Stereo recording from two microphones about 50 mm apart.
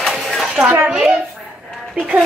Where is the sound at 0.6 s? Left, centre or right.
Right.